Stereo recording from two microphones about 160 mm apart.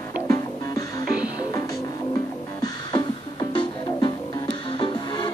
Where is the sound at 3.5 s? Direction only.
30° left (ahead or behind).